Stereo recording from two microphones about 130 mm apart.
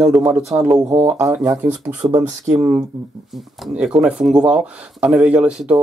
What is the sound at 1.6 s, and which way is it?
Speech, 10° right (ahead or behind).